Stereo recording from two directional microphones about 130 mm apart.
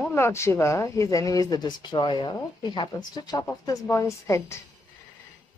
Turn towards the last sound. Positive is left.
turn(degrees=20)  # may be behind; listen again after turning